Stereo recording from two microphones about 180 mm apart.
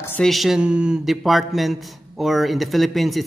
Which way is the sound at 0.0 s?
10° left (ahead or behind).